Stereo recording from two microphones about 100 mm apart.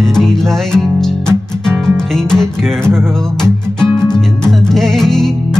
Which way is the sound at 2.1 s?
5° left (ahead or behind).